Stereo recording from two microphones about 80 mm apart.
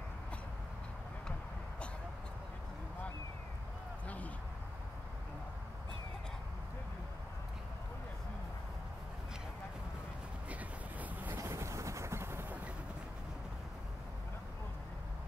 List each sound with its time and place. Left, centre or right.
10.5 s vehicle: centre
11.3 s vehicle: right